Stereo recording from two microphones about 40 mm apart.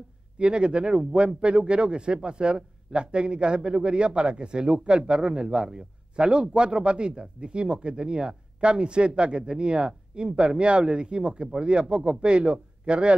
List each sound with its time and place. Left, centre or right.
0.4 s speech: right